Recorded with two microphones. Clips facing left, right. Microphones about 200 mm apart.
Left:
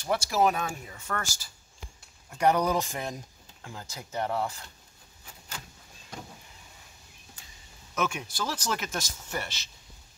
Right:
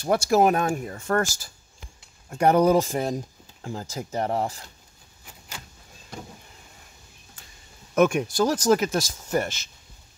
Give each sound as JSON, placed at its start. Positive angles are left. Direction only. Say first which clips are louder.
{"t": 0.0, "sound": "speech", "louder": "right 6 dB", "side_deg": -50}
{"t": 7.9, "sound": "speech", "louder": "right 11 dB", "side_deg": -50}